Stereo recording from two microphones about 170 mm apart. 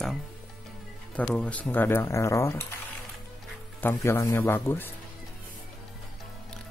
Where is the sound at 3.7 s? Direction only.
15° left (ahead or behind).